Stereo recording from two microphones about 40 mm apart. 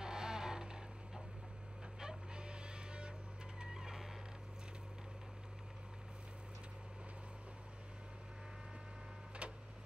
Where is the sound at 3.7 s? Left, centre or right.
Centre.